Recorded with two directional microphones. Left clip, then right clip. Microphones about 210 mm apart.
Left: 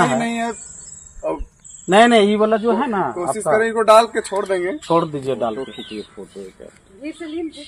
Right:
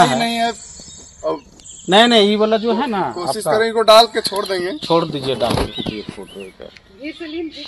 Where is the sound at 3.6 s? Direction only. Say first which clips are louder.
Right 2 dB; 25° left (ahead or behind).